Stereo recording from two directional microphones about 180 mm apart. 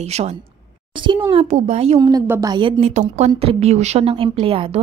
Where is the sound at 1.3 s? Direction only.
40° right (ahead or behind).